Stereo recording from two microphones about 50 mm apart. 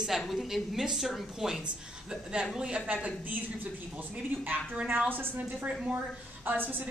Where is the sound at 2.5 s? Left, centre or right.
Right.